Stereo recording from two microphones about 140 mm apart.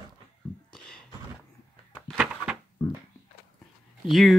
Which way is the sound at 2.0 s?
5° right (ahead or behind).